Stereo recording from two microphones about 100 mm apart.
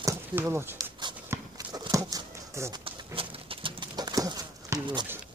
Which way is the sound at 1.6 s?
40° right (ahead or behind).